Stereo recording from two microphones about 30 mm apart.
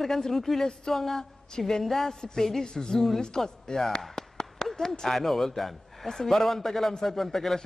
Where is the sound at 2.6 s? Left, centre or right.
Left.